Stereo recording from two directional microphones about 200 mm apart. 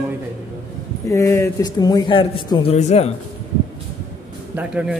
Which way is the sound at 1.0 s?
15° left (ahead or behind).